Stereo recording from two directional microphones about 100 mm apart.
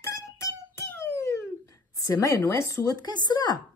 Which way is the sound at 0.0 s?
30° left (ahead or behind).